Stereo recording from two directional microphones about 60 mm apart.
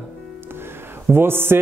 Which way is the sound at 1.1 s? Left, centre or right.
Right.